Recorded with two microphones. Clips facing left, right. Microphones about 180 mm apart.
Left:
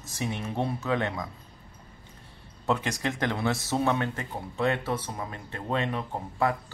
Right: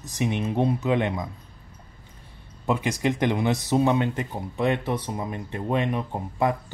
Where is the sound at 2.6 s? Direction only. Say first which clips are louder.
Right 4 dB; 10° right (ahead or behind).